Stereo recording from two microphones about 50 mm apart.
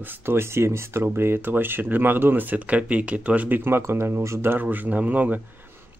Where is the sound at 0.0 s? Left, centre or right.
Right.